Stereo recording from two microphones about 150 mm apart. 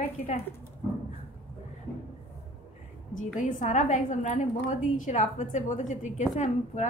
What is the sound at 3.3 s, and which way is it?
A woman's voice, 60° left (ahead or behind).